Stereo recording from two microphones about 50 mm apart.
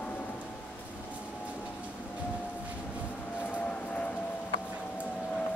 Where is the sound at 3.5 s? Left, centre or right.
Left.